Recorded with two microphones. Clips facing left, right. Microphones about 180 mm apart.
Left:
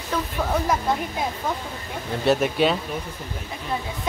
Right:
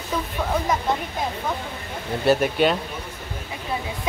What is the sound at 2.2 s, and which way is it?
Speech, centre (ahead or behind).